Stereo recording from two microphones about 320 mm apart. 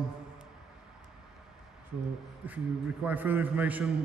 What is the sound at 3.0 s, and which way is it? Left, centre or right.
Speech, centre.